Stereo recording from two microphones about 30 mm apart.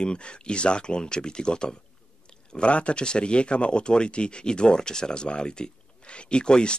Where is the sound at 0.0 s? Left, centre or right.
Left.